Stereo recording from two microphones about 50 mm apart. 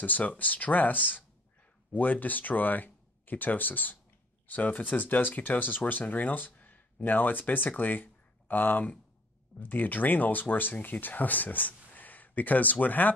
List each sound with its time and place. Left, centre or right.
0.0 s speech: left